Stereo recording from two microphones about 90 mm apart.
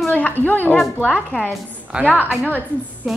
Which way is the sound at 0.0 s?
15° left (ahead or behind).